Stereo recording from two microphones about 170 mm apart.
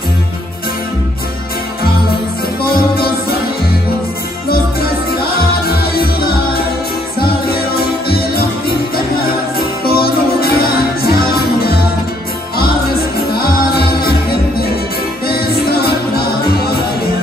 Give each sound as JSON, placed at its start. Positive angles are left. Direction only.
{"t": 2.6, "sound": "music", "side_deg": 60}
{"t": 5.2, "sound": "music", "side_deg": 65}
{"t": 8.1, "sound": "music", "side_deg": 65}
{"t": 13.3, "sound": "music", "side_deg": 65}
{"t": 15.2, "sound": "music", "side_deg": 65}